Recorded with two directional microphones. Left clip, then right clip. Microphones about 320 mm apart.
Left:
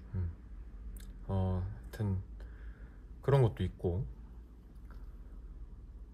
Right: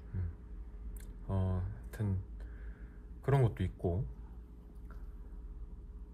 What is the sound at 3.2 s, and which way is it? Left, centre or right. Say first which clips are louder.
Speech: left 3 dB; centre.